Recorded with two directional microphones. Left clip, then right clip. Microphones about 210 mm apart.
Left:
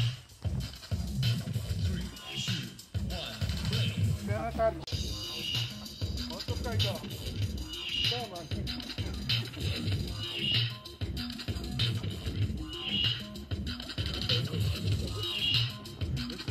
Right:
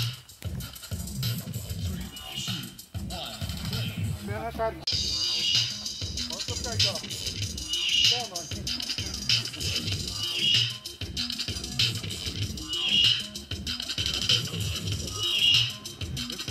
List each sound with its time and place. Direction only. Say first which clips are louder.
2.3 s music: right 1 dB; centre (ahead or behind)
4.3 s music: even; 40° left (ahead or behind); by 15.7 s 25° left (ahead or behind)